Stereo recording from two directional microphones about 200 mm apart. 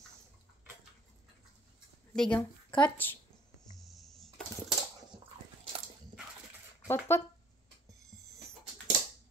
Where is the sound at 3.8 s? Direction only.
Centre (ahead or behind).